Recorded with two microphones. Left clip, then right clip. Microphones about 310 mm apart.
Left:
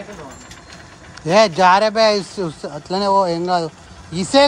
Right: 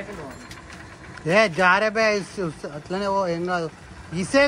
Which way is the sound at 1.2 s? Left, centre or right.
Centre.